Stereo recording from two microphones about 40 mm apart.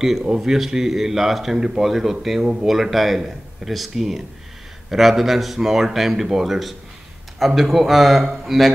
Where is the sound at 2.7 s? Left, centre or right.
Centre.